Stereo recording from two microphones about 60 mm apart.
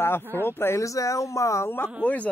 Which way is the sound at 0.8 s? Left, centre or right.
Left.